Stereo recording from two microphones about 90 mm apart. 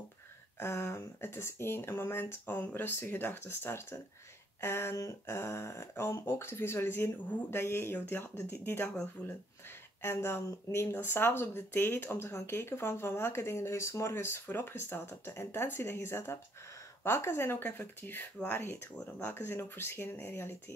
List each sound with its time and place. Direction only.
0.6 s speech: 30° left (ahead or behind)
10.0 s speech: 30° left (ahead or behind)
18.9 s speech: 10° left (ahead or behind)
19.3 s speech: 25° left (ahead or behind)